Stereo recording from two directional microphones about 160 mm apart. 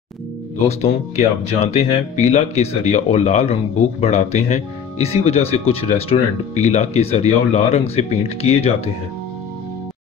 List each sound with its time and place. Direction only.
0.7 s speech: 40° left (ahead or behind)